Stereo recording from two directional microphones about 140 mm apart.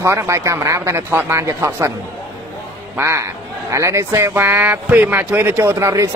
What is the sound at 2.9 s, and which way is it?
Speech, 20° right (ahead or behind).